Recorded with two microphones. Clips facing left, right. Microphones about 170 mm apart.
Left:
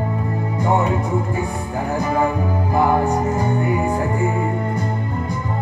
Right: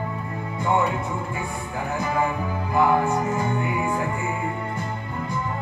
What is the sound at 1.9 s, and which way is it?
Music, 40° left (ahead or behind).